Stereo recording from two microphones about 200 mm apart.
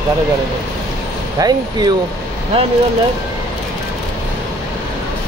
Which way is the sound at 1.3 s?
20° right (ahead or behind).